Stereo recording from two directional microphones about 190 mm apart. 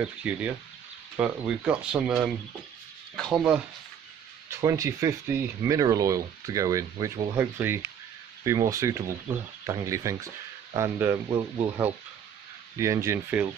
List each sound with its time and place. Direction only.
0.0 s speech: 5° right (ahead or behind)
4.5 s speech: 15° right (ahead or behind)
12.7 s speech: 15° right (ahead or behind)